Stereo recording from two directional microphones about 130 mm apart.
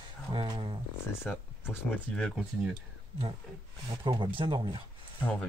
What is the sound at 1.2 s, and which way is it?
Speech, 15° left (ahead or behind).